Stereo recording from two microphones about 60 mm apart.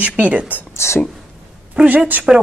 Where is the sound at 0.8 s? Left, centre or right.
Left.